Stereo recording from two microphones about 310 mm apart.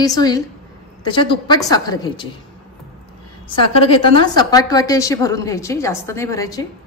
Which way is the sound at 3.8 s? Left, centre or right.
Centre.